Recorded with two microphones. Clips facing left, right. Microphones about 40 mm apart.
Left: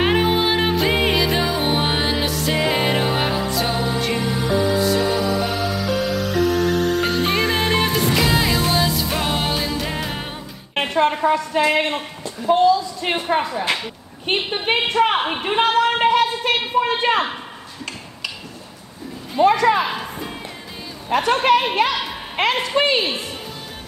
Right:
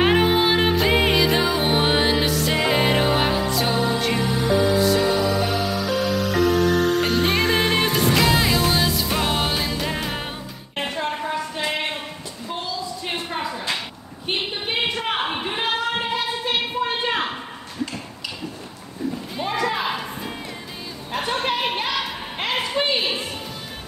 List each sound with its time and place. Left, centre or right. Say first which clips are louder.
0.0 s music: even; centre
10.7 s music: left 8 dB; left
11.2 s a woman's voice: left 8 dB; left
12.5 s a woman's voice: left 14 dB; left
15.2 s a sound: left 5 dB; left
19.4 s a woman's voice: left 9 dB; left
21.1 s a woman's voice: left 8 dB; left